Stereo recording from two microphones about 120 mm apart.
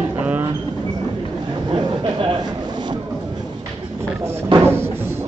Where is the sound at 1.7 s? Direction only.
40° right (ahead or behind).